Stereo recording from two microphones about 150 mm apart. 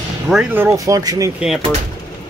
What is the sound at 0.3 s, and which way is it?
Speech, 5° right (ahead or behind).